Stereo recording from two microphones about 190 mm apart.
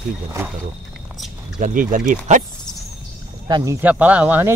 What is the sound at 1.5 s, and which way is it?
Speech, 45° right (ahead or behind).